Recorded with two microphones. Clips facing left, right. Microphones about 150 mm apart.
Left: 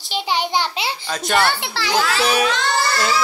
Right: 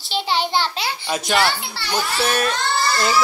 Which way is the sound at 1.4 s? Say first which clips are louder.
Left 1 dB; 65° left (ahead or behind).